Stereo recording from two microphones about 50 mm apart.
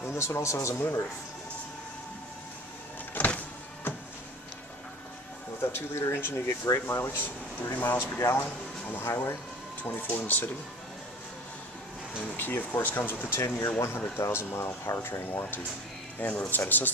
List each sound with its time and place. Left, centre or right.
0.0 s speech: left
0.7 s speech: left
3.2 s power windows: left
5.6 s speech: left
7.7 s speech: left
8.0 s speech: left
9.9 s speech: left
12.4 s speech: left
13.3 s speech: left
14.1 s speech: left
16.2 s speech: left